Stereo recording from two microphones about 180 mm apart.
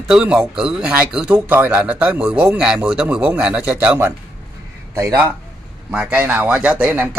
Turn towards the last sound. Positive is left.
turn(degrees=-10)  # may be behind; listen again after turning